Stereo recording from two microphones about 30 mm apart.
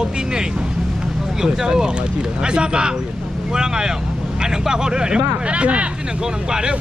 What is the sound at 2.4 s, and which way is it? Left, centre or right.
Speech, right.